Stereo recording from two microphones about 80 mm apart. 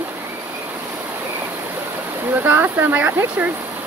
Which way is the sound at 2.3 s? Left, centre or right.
Right.